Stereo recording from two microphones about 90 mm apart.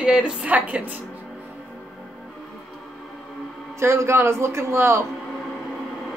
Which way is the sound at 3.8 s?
30° right (ahead or behind).